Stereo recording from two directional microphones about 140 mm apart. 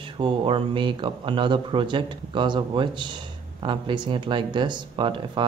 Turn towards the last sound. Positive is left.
turn(degrees=-35)  # may be behind; listen again after turning